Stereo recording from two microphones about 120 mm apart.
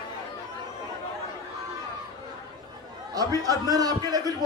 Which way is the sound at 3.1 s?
30° right (ahead or behind).